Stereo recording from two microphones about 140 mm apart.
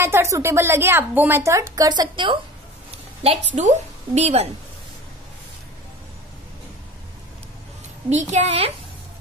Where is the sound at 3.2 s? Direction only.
50° right (ahead or behind).